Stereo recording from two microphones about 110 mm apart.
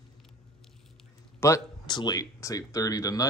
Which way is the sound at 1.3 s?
25° left (ahead or behind).